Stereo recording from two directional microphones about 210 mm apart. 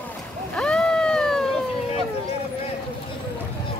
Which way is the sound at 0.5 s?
5° left (ahead or behind).